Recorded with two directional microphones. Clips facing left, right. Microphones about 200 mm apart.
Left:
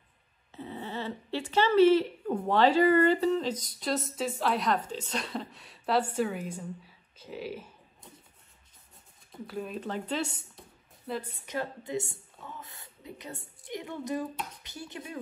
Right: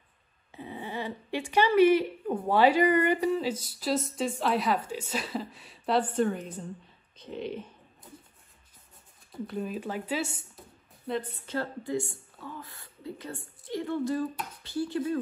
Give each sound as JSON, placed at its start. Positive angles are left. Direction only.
{"t": 0.5, "sound": "dog", "side_deg": -15}
{"t": 1.5, "sound": "a woman's voice", "side_deg": -15}
{"t": 9.3, "sound": "a woman's voice", "side_deg": -5}
{"t": 11.1, "sound": "a woman's voice", "side_deg": 10}